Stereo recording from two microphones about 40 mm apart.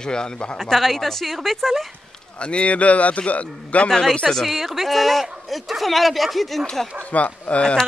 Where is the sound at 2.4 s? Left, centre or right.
Left.